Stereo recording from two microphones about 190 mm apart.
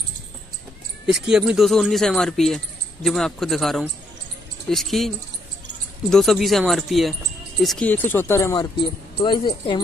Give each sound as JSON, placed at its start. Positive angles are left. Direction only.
{"t": 1.0, "sound": "speech", "side_deg": -5}